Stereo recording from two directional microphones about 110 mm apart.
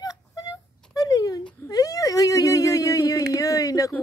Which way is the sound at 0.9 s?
35° left (ahead or behind).